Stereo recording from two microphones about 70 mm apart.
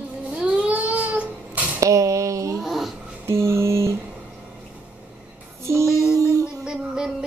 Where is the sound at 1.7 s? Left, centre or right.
Right.